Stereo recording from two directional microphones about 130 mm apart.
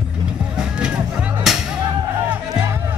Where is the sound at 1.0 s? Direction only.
10° right (ahead or behind).